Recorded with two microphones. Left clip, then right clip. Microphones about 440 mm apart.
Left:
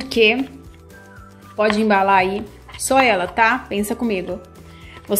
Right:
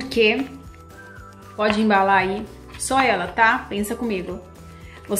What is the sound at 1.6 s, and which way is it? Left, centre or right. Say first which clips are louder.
A woman's voice: left 2 dB; centre.